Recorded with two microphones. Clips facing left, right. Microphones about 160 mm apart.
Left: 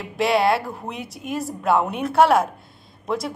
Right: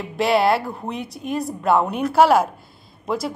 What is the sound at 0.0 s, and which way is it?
A woman's voice, centre (ahead or behind).